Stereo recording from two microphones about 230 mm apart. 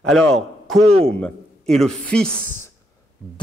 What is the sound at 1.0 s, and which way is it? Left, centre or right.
A woman's voice, centre.